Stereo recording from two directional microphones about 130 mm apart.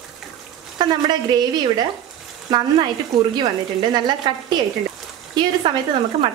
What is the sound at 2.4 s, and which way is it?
A woman's voice, 35° right (ahead or behind).